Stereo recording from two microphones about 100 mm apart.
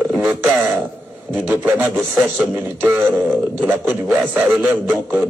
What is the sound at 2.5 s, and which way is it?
A man's voice, 25° right (ahead or behind).